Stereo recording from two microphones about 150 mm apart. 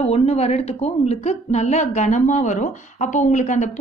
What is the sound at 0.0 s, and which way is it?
A woman's voice, 45° left (ahead or behind).